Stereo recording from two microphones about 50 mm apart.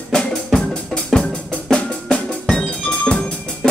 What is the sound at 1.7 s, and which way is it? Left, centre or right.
Percussion, centre.